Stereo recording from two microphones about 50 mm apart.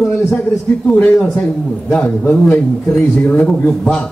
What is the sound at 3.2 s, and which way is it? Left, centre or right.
Speech, left.